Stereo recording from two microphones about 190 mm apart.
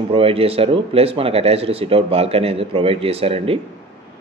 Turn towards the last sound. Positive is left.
turn(degrees=-30)  # may be behind; listen again after turning